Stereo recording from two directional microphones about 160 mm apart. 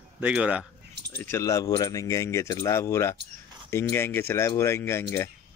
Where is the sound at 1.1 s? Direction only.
15° left (ahead or behind).